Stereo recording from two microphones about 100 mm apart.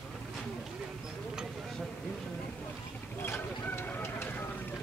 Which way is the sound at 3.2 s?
20° left (ahead or behind).